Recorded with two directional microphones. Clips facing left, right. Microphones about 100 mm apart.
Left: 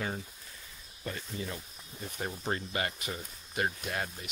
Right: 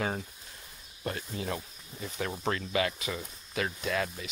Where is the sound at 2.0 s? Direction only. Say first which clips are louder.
Right 3 dB; 90° right.